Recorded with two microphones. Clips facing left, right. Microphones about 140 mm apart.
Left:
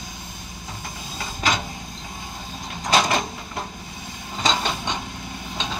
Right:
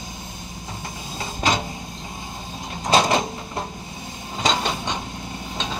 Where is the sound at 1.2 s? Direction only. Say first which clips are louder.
Right 2 dB; 25° right (ahead or behind).